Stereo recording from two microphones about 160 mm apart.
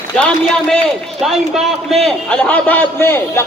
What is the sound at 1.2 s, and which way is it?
A man's voice, centre (ahead or behind).